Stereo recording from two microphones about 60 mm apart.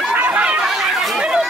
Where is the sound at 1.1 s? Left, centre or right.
Centre.